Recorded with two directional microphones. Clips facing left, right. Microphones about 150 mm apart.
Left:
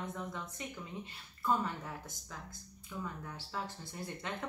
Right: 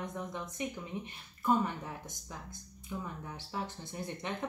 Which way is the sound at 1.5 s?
20° right (ahead or behind).